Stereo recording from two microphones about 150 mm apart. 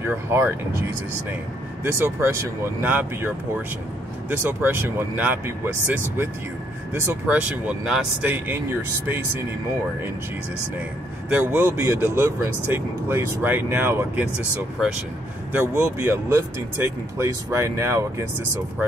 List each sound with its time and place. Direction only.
0.0 s speech: 15° right (ahead or behind)
1.9 s speech: 15° right (ahead or behind)
11.2 s speech: 10° right (ahead or behind)
14.8 s speech: centre (ahead or behind)
15.5 s speech: 15° right (ahead or behind)